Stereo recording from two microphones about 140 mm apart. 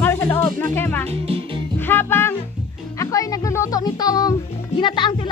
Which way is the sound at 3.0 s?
25° left (ahead or behind).